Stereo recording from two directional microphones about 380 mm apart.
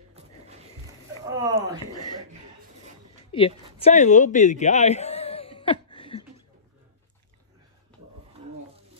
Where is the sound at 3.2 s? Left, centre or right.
Centre.